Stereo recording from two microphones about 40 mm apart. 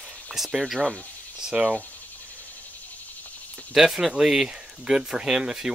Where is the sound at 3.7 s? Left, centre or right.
Centre.